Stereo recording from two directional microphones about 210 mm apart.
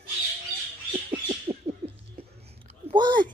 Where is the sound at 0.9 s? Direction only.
25° right (ahead or behind).